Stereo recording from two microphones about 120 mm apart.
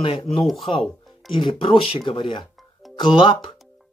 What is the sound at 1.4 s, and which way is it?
Speech, 45° left (ahead or behind).